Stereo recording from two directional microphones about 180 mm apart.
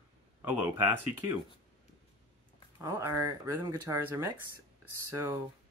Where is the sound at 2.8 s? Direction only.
15° right (ahead or behind).